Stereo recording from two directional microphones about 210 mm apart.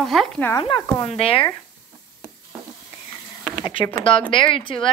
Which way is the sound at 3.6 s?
20° left (ahead or behind).